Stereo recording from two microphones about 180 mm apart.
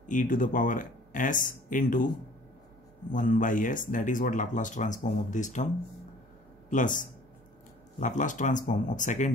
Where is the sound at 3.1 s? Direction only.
45° left (ahead or behind).